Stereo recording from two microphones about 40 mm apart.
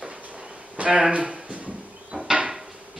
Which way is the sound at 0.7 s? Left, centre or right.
Right.